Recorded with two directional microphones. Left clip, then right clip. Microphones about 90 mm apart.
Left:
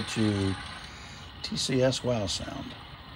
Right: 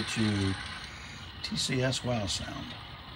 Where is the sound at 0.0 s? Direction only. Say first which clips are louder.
Left 2 dB; 35° left (ahead or behind).